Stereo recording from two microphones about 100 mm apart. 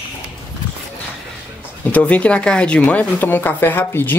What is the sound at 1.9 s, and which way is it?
Speech, 15° left (ahead or behind).